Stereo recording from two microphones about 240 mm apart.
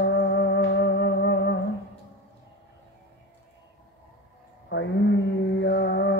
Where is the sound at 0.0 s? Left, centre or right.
Left.